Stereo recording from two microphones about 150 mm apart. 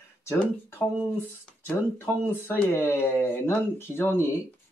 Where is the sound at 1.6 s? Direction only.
15° left (ahead or behind).